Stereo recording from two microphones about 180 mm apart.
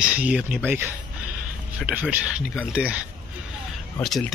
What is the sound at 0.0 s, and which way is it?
Speech, 5° right (ahead or behind).